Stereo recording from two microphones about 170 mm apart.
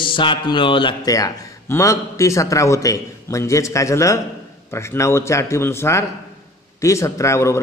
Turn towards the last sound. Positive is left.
turn(degrees=15)  # may be behind; listen again after turning